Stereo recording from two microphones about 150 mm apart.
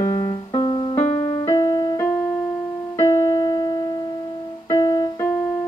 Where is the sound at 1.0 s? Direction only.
45° left (ahead or behind).